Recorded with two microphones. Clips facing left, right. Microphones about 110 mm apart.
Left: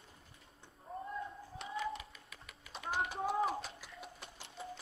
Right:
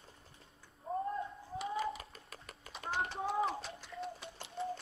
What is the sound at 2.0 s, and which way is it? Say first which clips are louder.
Cat: right 1 dB; 40° right (ahead or behind).